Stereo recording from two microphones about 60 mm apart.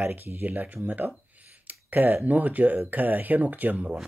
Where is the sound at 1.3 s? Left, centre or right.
Right.